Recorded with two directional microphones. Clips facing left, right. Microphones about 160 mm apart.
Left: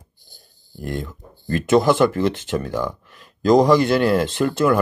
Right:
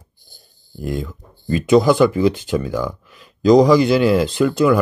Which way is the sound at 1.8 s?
Centre (ahead or behind).